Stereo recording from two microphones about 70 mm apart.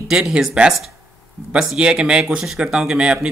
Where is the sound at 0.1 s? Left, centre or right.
Centre.